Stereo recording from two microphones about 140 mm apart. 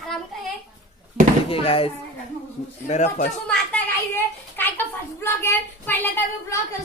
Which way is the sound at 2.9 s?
60° left (ahead or behind).